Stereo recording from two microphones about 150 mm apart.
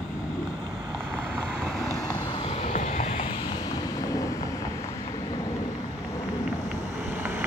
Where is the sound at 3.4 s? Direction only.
25° left (ahead or behind).